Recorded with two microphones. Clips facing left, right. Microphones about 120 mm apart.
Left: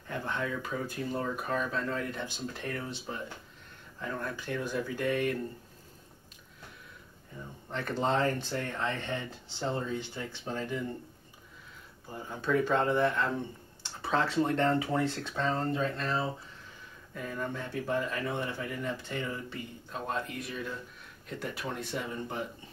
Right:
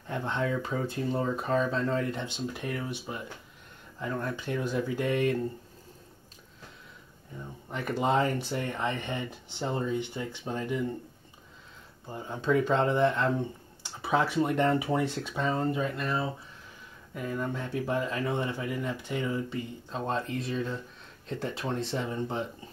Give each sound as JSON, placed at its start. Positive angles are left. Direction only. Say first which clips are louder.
{"t": 0.1, "sound": "speech", "louder": "right 4 dB", "side_deg": -20}
{"t": 7.7, "sound": "speech", "louder": "right 3 dB", "side_deg": -10}
{"t": 12.1, "sound": "speech", "louder": "right 3 dB", "side_deg": -20}